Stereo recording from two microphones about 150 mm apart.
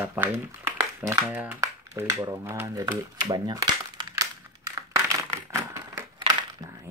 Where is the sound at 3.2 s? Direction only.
30° right (ahead or behind).